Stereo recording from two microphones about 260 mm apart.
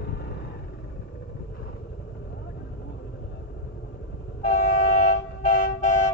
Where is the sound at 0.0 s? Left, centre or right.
Left.